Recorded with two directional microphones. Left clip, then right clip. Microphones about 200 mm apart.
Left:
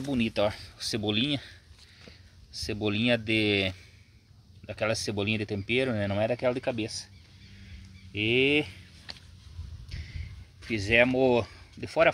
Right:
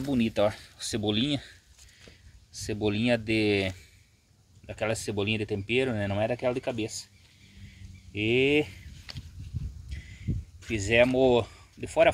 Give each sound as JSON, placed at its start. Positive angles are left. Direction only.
{"t": 0.1, "sound": "speech", "side_deg": -5}
{"t": 2.5, "sound": "speech", "side_deg": 5}
{"t": 8.1, "sound": "speech", "side_deg": 5}
{"t": 10.7, "sound": "speech", "side_deg": 10}